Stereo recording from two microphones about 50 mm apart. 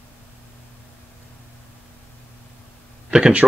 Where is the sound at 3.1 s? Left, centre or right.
Centre.